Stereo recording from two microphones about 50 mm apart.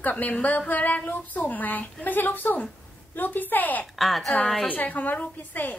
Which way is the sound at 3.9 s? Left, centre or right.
Centre.